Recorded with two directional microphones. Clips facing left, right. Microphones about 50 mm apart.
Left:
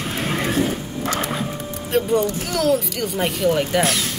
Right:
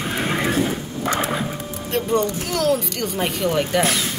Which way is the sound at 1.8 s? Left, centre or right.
Centre.